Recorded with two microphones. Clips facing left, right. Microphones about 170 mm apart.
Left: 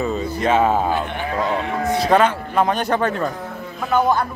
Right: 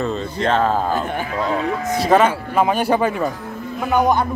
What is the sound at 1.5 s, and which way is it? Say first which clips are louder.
Speech: right 2 dB; centre (ahead or behind).